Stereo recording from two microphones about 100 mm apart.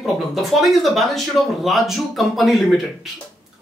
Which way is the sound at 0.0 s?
Centre (ahead or behind).